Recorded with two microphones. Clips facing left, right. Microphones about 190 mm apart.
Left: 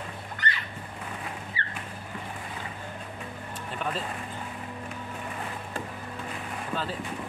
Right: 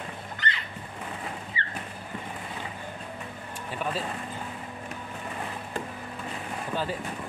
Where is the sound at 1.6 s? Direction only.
20° right (ahead or behind).